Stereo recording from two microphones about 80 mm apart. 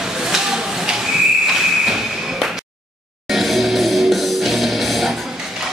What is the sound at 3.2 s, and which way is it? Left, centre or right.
Music, centre.